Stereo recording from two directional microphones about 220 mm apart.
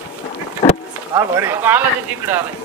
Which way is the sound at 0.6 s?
25° left (ahead or behind).